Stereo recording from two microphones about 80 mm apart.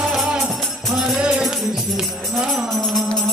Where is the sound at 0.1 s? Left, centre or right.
Centre.